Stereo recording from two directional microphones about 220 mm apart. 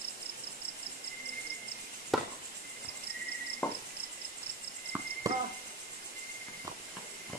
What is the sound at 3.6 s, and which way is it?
Cricket, 5° left (ahead or behind).